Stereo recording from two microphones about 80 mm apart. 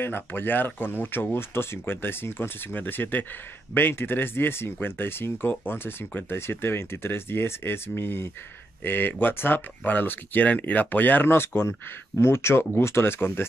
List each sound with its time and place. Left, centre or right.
0.0 s speech: left